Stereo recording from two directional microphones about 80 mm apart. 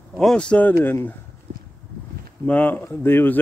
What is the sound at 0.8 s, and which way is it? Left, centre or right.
Speech, left.